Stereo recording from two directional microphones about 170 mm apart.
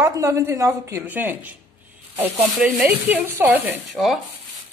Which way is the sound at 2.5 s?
Centre (ahead or behind).